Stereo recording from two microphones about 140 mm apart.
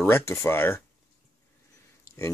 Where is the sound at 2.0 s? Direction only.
20° left (ahead or behind).